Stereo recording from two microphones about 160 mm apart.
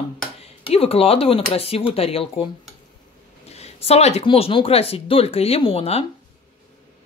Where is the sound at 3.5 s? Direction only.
40° left (ahead or behind).